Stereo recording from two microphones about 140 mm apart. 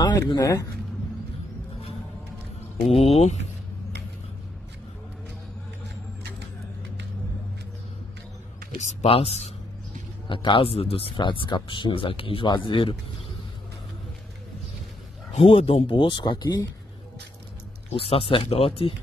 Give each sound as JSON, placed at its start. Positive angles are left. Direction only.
{"t": 0.0, "sound": "speech", "side_deg": 25}
{"t": 2.9, "sound": "speech", "side_deg": 45}
{"t": 8.7, "sound": "speech", "side_deg": 50}
{"t": 15.3, "sound": "speech", "side_deg": 40}
{"t": 17.8, "sound": "speech", "side_deg": 45}